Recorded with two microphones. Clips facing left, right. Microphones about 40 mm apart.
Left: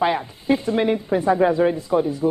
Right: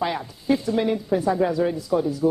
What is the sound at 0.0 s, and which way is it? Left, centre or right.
A woman's voice, left.